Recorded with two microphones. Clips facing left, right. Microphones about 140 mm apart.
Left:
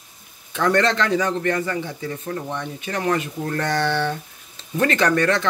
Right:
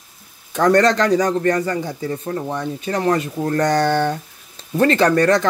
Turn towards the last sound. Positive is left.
turn(degrees=-40)  # may be behind; listen again after turning